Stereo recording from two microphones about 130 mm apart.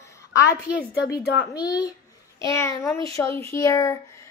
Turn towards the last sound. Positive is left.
turn(degrees=25)  # may be behind; listen again after turning